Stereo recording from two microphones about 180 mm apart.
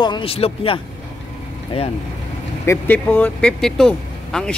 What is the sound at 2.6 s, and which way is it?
Speech, 15° left (ahead or behind).